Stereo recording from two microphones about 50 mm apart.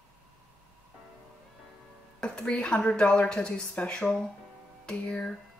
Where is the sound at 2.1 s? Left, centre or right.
Centre.